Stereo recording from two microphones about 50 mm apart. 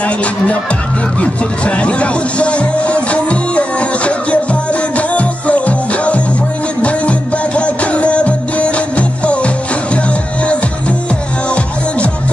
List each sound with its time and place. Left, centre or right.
0.0 s music: left